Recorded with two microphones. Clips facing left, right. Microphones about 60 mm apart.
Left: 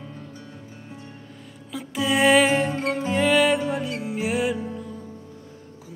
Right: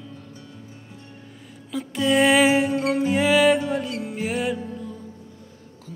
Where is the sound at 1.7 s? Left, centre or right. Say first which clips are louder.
Right 3 dB; centre.